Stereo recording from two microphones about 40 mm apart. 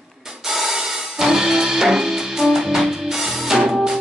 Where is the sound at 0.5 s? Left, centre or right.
Centre.